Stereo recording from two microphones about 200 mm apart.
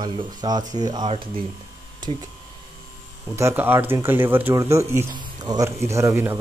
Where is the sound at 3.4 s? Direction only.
10° right (ahead or behind).